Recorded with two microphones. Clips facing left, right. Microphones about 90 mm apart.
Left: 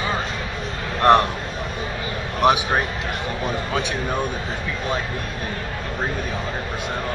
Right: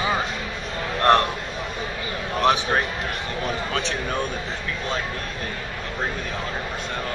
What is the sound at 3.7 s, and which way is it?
Speech, 10° left (ahead or behind).